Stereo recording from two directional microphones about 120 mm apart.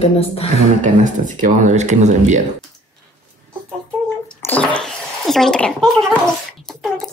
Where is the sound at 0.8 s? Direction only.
90° right.